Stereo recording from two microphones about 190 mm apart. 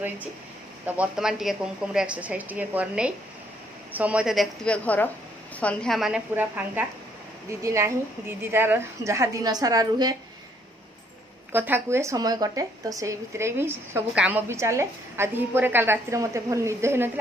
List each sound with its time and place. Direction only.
0.8 s a woman's voice: 5° right (ahead or behind)
11.5 s a woman's voice: 10° right (ahead or behind)